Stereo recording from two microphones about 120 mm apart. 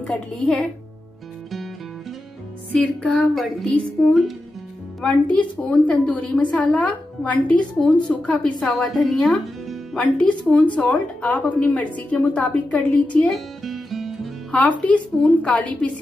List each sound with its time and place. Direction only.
0.0 s a woman's voice: centre (ahead or behind)
1.5 s music: centre (ahead or behind)
2.8 s a woman's voice: 10° left (ahead or behind)
13.7 s music: centre (ahead or behind)
14.6 s a woman's voice: 10° left (ahead or behind)